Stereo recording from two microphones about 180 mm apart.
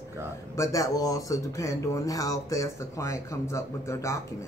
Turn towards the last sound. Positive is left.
turn(degrees=15)  # may be behind; listen again after turning